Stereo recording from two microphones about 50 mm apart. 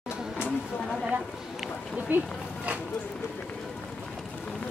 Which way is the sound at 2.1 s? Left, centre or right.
Right.